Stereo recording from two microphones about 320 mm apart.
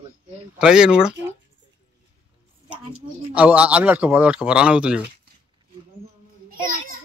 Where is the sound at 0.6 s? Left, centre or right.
Centre.